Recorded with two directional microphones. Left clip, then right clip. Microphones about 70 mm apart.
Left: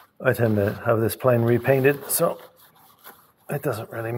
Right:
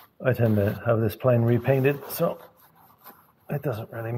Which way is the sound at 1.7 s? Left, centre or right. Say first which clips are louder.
Left 4 dB; left.